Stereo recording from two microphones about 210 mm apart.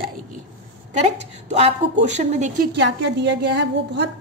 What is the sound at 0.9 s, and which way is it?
A woman's voice, 30° right (ahead or behind).